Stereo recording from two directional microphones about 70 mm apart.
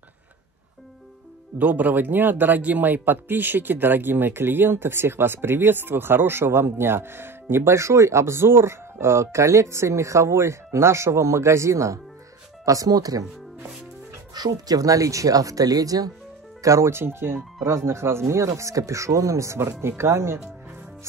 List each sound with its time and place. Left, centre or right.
1.6 s speech: right
12.6 s speech: right
14.3 s speech: right
16.6 s speech: right